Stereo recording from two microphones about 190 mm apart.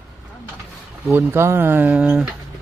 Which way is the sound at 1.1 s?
10° right (ahead or behind).